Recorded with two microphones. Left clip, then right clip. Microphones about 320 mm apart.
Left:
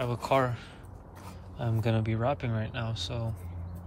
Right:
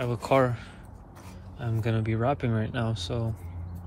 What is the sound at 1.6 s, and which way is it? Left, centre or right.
Speech, centre.